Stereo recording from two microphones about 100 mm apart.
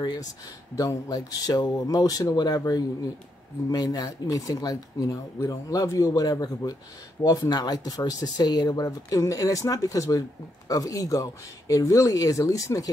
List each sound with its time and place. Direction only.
0.7 s speech: 35° left (ahead or behind)